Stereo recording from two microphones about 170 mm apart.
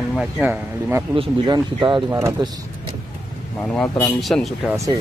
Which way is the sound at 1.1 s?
25° right (ahead or behind).